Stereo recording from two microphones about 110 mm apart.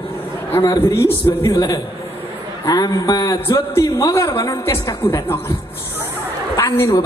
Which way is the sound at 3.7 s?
30° left (ahead or behind).